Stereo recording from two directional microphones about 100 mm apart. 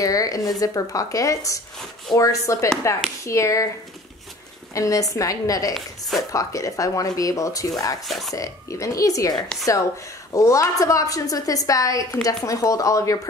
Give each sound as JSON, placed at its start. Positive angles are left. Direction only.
{"t": 0.0, "sound": "a woman's voice", "side_deg": 35}
{"t": 4.7, "sound": "a woman's voice", "side_deg": 35}
{"t": 5.8, "sound": "a woman's voice", "side_deg": 0}
{"t": 6.3, "sound": "a woman's voice", "side_deg": 35}
{"t": 8.1, "sound": "a woman's voice", "side_deg": 0}
{"t": 8.4, "sound": "a woman's voice", "side_deg": 35}